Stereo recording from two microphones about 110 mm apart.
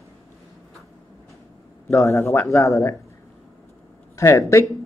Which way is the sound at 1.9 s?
25° left (ahead or behind).